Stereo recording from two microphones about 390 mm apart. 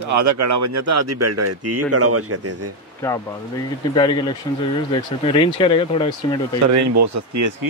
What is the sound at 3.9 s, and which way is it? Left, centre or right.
Speech, centre.